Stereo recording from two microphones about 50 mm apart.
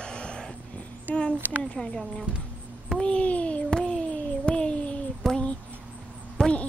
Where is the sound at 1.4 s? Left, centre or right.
Right.